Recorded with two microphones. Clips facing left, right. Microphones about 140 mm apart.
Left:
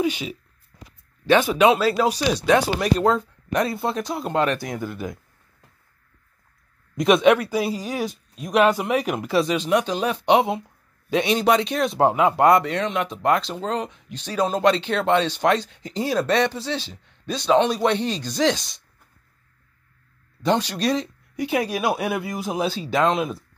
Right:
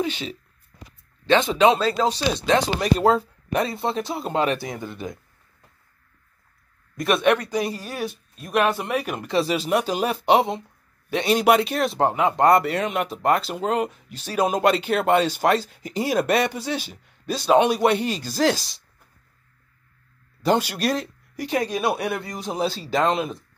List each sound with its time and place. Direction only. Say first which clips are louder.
0.0 s speech: left 3 dB; 10° left (ahead or behind)
1.5 s speech: left 1 dB; 10° left (ahead or behind)
7.0 s speech: left 4 dB; 15° left (ahead or behind)
9.4 s speech: even; 5° right (ahead or behind)
20.4 s speech: even; 5° right (ahead or behind)